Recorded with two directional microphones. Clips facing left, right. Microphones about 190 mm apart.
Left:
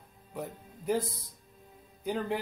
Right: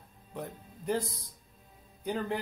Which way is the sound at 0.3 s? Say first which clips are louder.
Left 1 dB; 5° left (ahead or behind).